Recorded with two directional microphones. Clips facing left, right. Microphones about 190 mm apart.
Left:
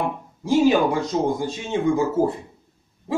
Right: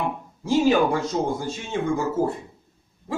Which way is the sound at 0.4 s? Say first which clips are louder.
Left 2 dB; 15° left (ahead or behind).